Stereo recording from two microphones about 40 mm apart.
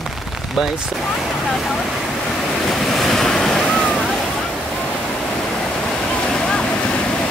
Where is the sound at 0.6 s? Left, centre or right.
Centre.